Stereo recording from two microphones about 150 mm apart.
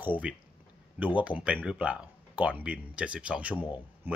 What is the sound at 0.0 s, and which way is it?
Speech, 10° right (ahead or behind).